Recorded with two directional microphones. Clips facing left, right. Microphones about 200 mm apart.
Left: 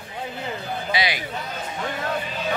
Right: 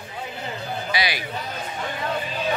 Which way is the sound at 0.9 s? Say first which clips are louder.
Left 2 dB; 20° left (ahead or behind).